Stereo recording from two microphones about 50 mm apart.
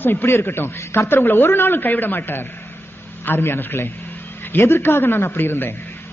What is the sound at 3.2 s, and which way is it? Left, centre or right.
A woman's voice, left.